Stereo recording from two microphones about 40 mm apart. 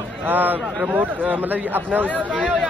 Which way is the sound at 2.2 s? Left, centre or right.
Right.